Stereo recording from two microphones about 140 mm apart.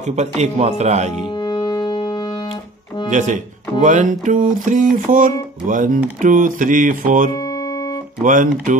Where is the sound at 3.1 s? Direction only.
60° right (ahead or behind).